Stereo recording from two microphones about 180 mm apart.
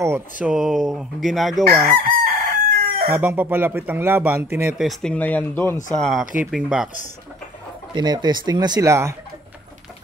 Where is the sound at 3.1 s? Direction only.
10° right (ahead or behind).